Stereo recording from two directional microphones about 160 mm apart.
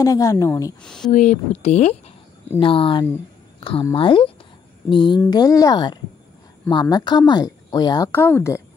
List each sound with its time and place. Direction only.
0.0 s speech: 20° left (ahead or behind)
0.8 s speech: 5° left (ahead or behind)
1.1 s speech: 50° left (ahead or behind); by 8.1 s 25° left (ahead or behind)
8.1 s speech: 15° left (ahead or behind)